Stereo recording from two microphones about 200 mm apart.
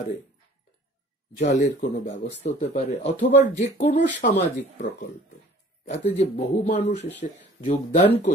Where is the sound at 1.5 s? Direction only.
60° left (ahead or behind).